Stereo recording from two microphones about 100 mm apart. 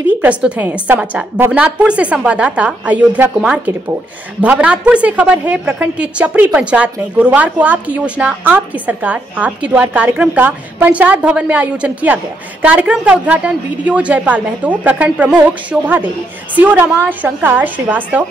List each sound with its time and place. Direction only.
0.2 s a woman's voice: 15° right (ahead or behind)